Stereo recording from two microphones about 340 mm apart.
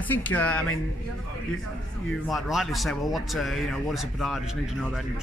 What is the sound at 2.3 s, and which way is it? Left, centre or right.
Speech, centre.